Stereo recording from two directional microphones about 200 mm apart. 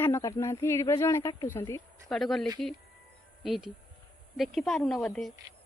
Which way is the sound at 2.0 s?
Centre (ahead or behind).